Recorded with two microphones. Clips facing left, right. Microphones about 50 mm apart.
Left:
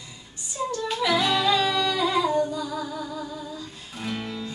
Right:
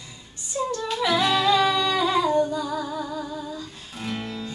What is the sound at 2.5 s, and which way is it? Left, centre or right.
Music, right.